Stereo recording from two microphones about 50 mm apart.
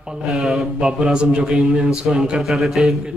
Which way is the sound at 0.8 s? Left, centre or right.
Centre.